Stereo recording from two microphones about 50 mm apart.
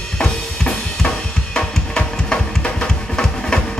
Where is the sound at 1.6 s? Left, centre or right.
Centre.